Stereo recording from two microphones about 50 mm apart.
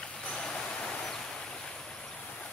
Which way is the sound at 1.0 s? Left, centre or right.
Centre.